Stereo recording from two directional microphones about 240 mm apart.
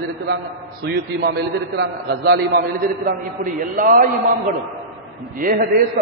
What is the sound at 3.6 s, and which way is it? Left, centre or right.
Speech, right.